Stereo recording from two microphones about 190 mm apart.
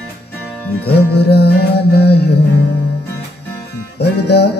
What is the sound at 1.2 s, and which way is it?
Music, 60° left (ahead or behind).